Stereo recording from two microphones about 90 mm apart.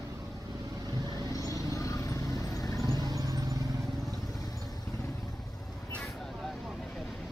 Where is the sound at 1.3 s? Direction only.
40° left (ahead or behind).